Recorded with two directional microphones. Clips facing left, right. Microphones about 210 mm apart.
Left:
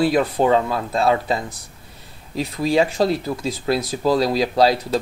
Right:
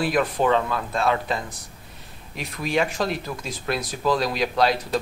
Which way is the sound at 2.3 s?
30° left (ahead or behind).